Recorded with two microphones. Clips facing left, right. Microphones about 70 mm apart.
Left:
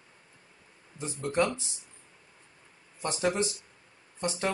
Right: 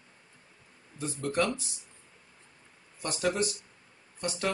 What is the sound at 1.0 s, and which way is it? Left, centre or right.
Speech, left.